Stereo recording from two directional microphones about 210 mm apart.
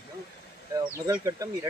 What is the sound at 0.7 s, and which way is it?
Speech, 15° right (ahead or behind).